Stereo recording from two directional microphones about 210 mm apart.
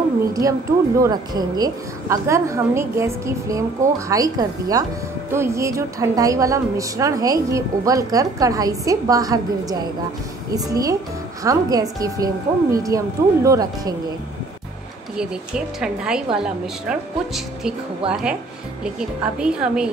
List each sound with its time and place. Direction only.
0.3 s a woman's voice: 15° right (ahead or behind)
15.1 s a woman's voice: 5° right (ahead or behind)